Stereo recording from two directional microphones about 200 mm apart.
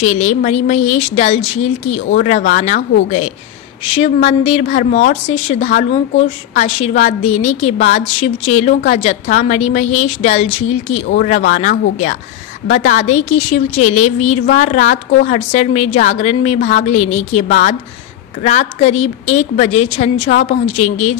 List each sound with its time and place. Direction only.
0.0 s a woman's voice: 35° left (ahead or behind)
3.9 s a woman's voice: 30° left (ahead or behind)
20.3 s speech: 45° left (ahead or behind)
20.7 s a woman's voice: 35° left (ahead or behind)